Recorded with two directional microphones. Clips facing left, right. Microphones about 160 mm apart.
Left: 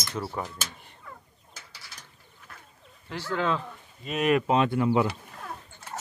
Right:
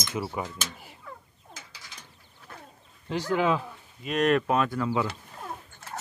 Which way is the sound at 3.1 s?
15° right (ahead or behind).